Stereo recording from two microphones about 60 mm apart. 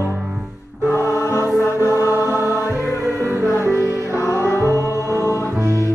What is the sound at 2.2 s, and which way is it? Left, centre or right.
Music, right.